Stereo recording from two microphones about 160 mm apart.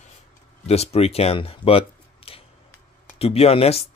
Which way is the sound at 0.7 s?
40° left (ahead or behind).